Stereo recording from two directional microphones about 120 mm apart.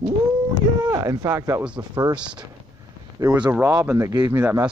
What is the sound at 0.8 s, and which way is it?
Speech, 30° right (ahead or behind).